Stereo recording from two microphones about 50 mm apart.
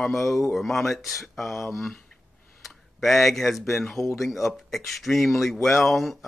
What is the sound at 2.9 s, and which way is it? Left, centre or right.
Speech, centre.